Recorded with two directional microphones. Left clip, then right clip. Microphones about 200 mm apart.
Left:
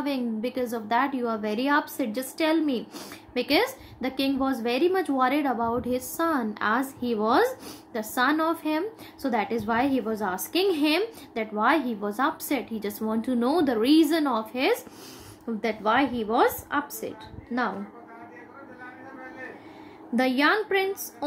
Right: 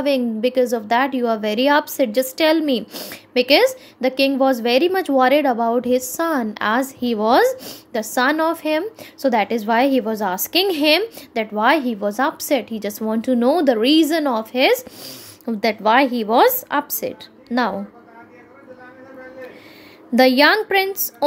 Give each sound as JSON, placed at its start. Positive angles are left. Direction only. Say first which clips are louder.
{"t": 0.0, "sound": "a woman's voice", "louder": "right 11 dB", "side_deg": -40}
{"t": 20.2, "sound": "a woman's voice", "louder": "right 10 dB", "side_deg": -50}